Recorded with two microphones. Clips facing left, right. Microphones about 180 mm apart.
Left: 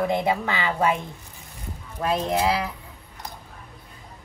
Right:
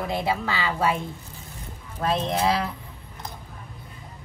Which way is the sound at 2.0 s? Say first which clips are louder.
Left 1 dB; 10° left (ahead or behind).